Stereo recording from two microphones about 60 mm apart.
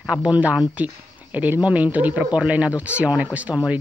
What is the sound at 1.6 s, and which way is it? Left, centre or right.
Speech, right.